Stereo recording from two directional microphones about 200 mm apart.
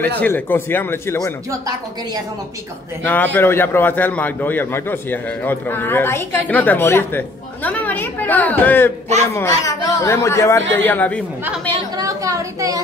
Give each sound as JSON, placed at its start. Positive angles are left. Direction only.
{"t": 0.2, "sound": "a man's voice", "side_deg": 10}
{"t": 3.0, "sound": "a man's voice", "side_deg": 10}
{"t": 12.0, "sound": "a sound", "side_deg": -15}